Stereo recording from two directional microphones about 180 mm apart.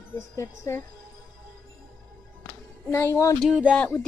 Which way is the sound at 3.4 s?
5° right (ahead or behind).